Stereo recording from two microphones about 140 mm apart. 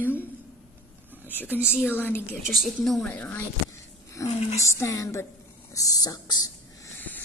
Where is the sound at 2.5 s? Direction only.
Centre (ahead or behind).